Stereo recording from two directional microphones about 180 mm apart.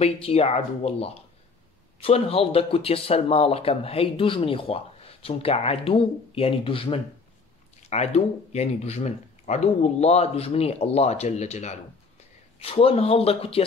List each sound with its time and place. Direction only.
0.0 s speech: 35° left (ahead or behind)